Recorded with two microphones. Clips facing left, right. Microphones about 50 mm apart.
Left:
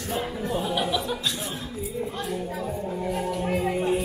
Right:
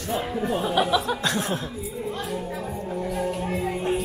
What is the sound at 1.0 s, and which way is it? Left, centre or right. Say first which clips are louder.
Speech: right 4 dB; right.